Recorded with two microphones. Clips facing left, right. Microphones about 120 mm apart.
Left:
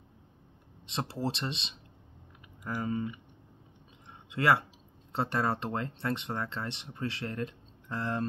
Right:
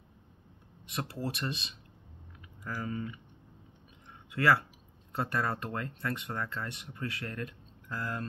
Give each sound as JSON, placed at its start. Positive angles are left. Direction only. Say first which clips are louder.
{"t": 0.8, "sound": "speech", "louder": "left 3 dB", "side_deg": 25}
{"t": 4.3, "sound": "speech", "louder": "left 1 dB", "side_deg": 20}